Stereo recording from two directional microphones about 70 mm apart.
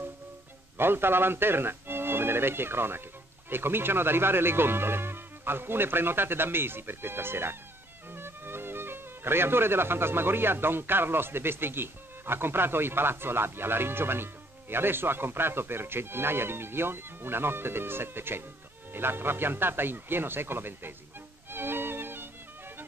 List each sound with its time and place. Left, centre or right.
0.7 s a man's voice: right
21.5 s music: right